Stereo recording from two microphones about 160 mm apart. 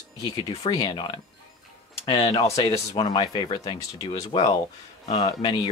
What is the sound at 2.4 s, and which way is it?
Speech, 20° left (ahead or behind).